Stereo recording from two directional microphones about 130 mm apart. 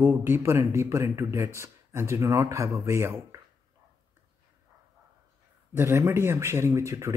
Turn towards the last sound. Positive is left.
turn(degrees=-20)  # may be behind; listen again after turning